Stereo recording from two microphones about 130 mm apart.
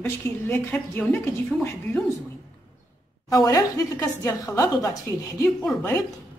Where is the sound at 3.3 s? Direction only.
25° left (ahead or behind).